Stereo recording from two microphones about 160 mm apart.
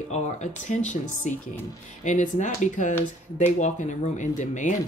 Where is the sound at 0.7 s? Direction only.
50° left (ahead or behind).